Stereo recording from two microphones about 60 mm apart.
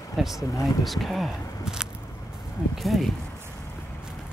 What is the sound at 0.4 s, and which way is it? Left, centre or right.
Speech, left.